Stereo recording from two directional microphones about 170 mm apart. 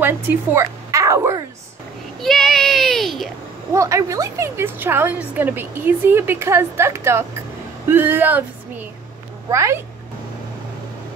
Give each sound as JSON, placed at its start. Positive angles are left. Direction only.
{"t": 0.0, "sound": "speech", "side_deg": -10}
{"t": 2.2, "sound": "child singing", "side_deg": 0}
{"t": 3.7, "sound": "a woman's voice", "side_deg": -20}
{"t": 9.5, "sound": "a woman's voice", "side_deg": -15}